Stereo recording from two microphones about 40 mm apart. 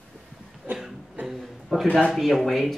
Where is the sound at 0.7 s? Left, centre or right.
Right.